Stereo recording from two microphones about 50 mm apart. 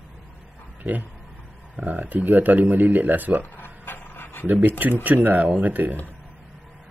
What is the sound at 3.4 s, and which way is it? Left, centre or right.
Dog, left.